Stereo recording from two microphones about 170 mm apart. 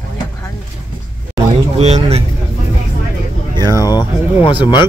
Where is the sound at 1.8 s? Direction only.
40° right (ahead or behind).